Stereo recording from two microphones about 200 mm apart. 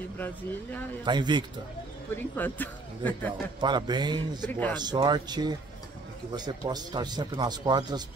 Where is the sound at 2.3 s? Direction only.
10° left (ahead or behind).